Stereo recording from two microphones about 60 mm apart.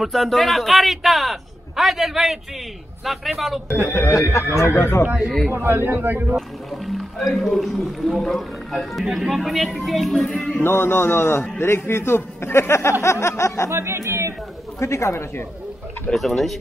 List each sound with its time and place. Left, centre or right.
0.0 s a man's voice: centre
3.9 s a man's voice: left
5.0 s speech: right
5.5 s a man's voice: right
5.9 s speech: right
6.3 s a man's voice: centre
10.6 s a man's voice: left
13.0 s a sound: left
13.7 s speech: right
14.8 s a man's voice: left
16.1 s a man's voice: centre